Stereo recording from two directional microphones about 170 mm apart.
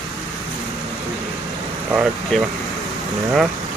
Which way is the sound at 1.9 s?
5° right (ahead or behind).